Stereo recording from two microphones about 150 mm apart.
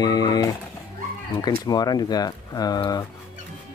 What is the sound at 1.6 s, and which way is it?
Speech, 25° left (ahead or behind).